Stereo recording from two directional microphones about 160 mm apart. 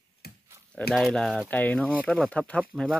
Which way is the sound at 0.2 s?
80° left.